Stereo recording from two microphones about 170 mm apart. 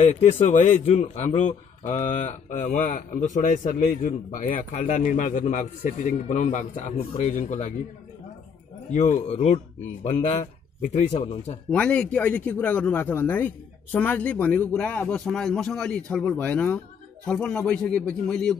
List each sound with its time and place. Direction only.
0.1 s a man's voice: 45° left (ahead or behind)
8.9 s a man's voice: 45° left (ahead or behind)
11.7 s a man's voice: 5° left (ahead or behind)